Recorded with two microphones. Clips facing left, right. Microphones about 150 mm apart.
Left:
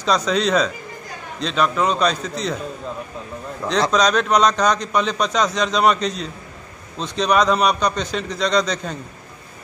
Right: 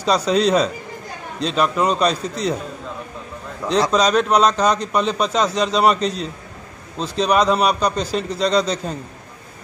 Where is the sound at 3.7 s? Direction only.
5° right (ahead or behind).